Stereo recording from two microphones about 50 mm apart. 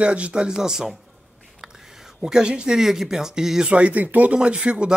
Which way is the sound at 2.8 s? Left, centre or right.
Centre.